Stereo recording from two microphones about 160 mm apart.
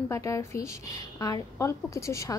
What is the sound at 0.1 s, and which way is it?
Speech, 20° left (ahead or behind).